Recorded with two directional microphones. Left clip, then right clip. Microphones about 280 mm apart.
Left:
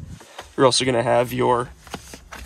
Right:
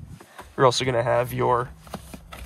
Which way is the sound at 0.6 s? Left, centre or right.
Centre.